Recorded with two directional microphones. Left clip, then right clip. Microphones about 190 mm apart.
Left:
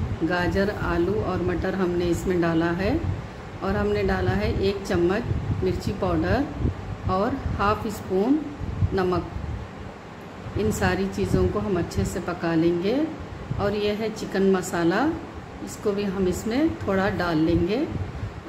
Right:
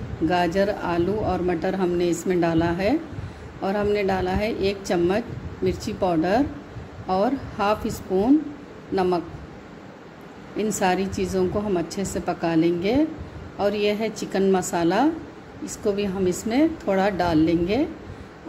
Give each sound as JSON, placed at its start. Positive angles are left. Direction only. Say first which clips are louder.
{"t": 0.3, "sound": "a man's voice", "louder": "right 4 dB", "side_deg": -25}
{"t": 10.6, "sound": "a man's voice", "louder": "right 2 dB", "side_deg": -25}